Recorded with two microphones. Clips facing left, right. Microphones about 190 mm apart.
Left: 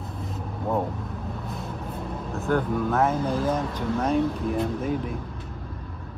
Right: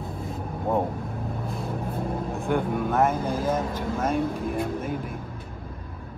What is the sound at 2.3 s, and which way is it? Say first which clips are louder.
Speech: left 3 dB; 10° right (ahead or behind).